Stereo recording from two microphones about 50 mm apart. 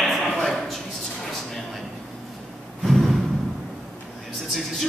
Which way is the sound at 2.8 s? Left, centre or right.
Centre.